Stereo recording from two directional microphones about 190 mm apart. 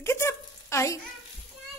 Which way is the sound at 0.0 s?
15° left (ahead or behind).